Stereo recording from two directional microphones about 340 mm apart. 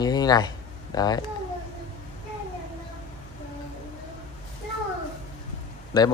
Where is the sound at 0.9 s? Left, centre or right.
Centre.